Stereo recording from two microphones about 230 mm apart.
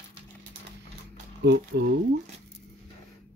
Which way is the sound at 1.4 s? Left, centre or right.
Right.